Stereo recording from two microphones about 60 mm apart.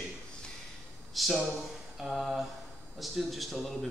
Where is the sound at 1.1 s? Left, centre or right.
Centre.